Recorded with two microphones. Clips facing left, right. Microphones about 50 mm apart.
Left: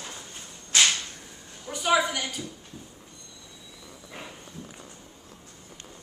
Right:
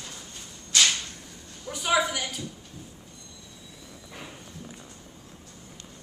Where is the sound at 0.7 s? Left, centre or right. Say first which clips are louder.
Left 1 dB; left.